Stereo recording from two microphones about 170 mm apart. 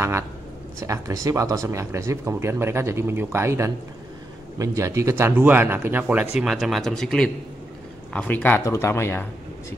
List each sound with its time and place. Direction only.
0.7 s speech: 20° right (ahead or behind); by 9.3 s 15° left (ahead or behind)